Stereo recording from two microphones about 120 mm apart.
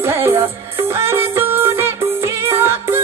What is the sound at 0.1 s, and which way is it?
Music, 20° right (ahead or behind).